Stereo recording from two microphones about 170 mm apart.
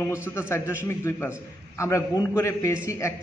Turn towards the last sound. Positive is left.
turn(degrees=15)  # may be behind; listen again after turning